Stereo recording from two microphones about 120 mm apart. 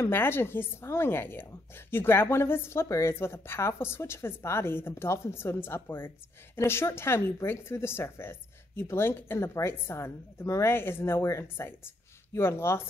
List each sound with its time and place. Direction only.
0.0 s a woman's voice: 20° left (ahead or behind)